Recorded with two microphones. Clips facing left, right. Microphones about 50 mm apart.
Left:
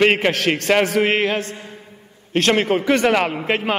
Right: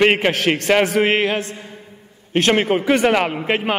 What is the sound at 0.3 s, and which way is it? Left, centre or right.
A man's voice, right.